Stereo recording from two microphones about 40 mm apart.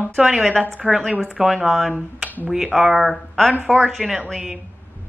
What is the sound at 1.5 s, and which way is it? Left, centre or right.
Speech, centre.